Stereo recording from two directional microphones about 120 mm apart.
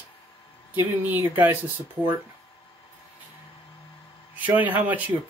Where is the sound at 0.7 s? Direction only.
15° right (ahead or behind).